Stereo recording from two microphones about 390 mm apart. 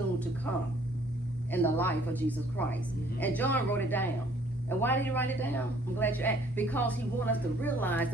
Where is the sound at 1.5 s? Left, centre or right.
Centre.